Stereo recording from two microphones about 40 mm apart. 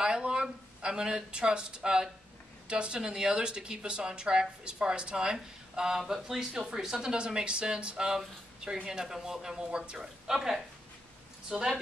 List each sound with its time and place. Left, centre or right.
0.0 s speech: right
10.2 s speech: centre
11.5 s speech: right